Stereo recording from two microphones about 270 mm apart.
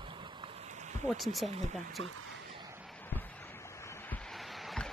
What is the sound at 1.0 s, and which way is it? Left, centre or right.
Speech, centre.